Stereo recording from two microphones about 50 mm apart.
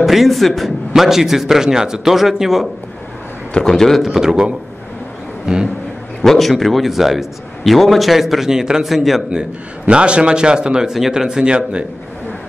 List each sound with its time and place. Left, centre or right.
0.0 s a man's voice: centre
3.7 s a man's voice: centre
4.0 s a man's voice: centre
5.5 s a man's voice: centre
6.2 s a man's voice: centre
8.8 s a man's voice: centre
9.3 s a man's voice: centre